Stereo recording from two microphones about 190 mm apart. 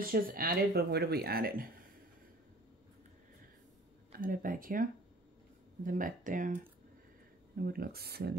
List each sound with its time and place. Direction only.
0.0 s speech: 50° right (ahead or behind)
4.1 s speech: 50° right (ahead or behind)
5.9 s speech: 45° right (ahead or behind)